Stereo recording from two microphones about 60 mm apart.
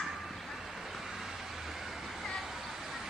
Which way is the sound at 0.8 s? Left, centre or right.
Centre.